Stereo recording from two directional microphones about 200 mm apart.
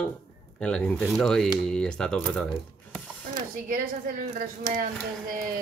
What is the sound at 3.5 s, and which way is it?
Speech, 45° right (ahead or behind).